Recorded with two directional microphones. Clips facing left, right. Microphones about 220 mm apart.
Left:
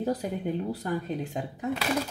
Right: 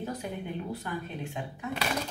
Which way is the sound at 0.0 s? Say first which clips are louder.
Left 7 dB; 35° left (ahead or behind).